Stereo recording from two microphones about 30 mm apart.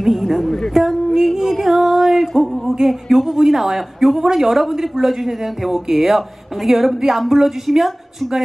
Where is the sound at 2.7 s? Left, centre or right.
Centre.